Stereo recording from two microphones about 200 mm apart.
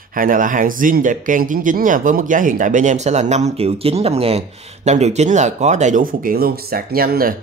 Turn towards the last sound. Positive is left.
turn(degrees=-45)  # may be behind; listen again after turning